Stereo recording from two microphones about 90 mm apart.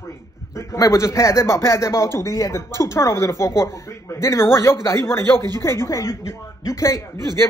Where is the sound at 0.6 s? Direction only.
35° left (ahead or behind).